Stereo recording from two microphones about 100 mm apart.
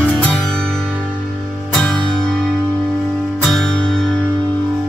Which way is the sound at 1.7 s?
5° left (ahead or behind).